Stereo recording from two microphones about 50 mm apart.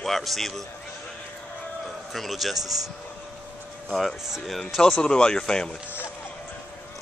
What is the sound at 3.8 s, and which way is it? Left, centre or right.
Speech, centre.